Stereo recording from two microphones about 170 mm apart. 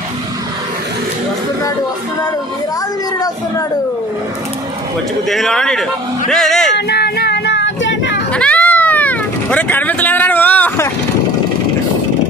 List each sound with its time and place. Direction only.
5.3 s speech: 5° left (ahead or behind)
6.9 s child singing: 70° left (ahead or behind); by 8.2 s 90° left
8.3 s vehicle: 5° left (ahead or behind)